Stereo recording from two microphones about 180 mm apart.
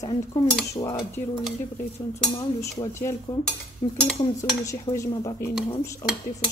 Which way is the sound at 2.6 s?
15° left (ahead or behind).